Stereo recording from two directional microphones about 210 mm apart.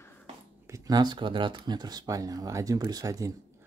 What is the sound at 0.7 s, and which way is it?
Speech, 15° right (ahead or behind).